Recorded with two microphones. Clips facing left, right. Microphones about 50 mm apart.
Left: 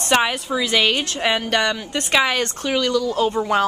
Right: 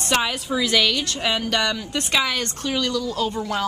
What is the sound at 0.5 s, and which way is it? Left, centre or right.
Speech, centre.